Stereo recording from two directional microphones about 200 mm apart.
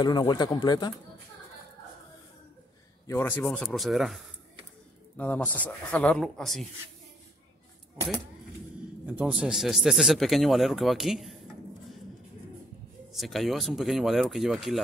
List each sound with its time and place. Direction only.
0.0 s speech: 20° left (ahead or behind)
3.1 s speech: 10° left (ahead or behind)
9.0 s speech: 5° right (ahead or behind)
13.1 s speech: centre (ahead or behind)